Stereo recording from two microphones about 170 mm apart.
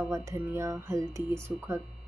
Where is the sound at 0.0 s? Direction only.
15° right (ahead or behind).